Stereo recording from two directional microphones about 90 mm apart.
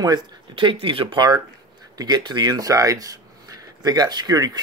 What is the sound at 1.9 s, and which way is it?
Speech, 50° right (ahead or behind).